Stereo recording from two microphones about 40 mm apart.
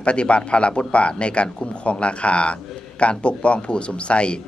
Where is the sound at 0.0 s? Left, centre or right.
Left.